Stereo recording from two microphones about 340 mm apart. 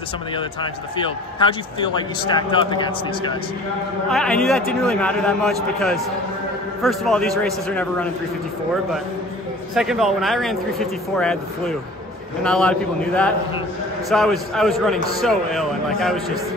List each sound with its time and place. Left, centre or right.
0.6 s a man's voice: centre
4.1 s a man's voice: centre
9.8 s a man's voice: centre